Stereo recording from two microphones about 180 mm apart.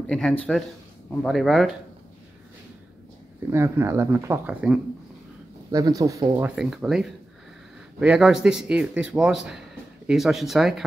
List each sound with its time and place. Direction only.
0.0 s a man's voice: 5° left (ahead or behind)
3.4 s speech: 15° right (ahead or behind)
5.7 s speech: 20° right (ahead or behind)
6.4 s a man's voice: 5° right (ahead or behind)